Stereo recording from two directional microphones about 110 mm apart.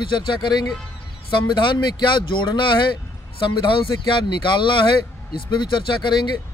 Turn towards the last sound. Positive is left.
turn(degrees=45)  # may be behind; listen again after turning